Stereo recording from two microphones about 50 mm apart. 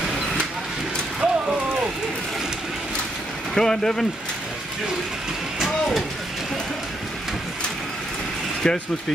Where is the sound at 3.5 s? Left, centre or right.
Centre.